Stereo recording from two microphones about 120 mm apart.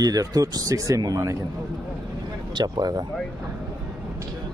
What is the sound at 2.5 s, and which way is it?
Speech, 35° right (ahead or behind).